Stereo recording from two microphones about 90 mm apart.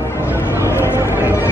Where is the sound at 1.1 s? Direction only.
25° right (ahead or behind).